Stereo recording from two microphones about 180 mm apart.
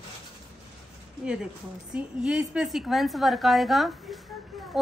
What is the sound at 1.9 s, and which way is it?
A woman's voice, 5° right (ahead or behind).